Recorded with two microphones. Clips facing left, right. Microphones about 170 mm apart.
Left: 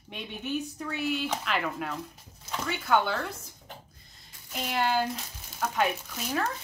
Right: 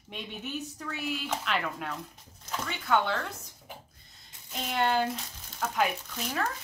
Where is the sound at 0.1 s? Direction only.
Centre (ahead or behind).